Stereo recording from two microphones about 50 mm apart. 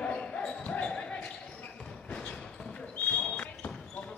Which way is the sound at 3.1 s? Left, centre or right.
Left.